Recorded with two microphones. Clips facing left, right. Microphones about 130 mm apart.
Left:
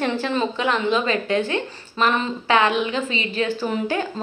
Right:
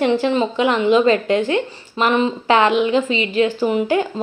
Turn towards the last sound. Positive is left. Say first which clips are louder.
# right 6 dB
turn(degrees=-15)  # may be behind; listen again after turning